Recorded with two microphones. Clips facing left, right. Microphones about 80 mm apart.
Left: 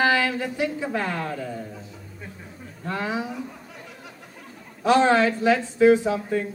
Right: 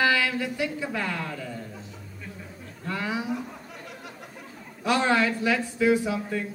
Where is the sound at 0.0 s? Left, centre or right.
Left.